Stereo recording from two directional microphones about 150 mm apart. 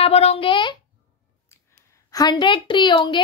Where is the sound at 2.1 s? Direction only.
25° left (ahead or behind).